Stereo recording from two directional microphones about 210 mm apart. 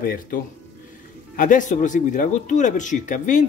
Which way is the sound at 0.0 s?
45° left (ahead or behind).